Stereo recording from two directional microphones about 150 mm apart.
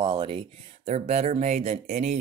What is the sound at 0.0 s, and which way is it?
Speech, 35° right (ahead or behind).